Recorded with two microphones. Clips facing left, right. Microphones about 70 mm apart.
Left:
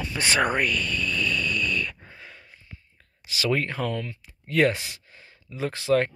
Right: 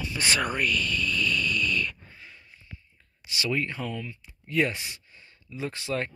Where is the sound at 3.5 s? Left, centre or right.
Left.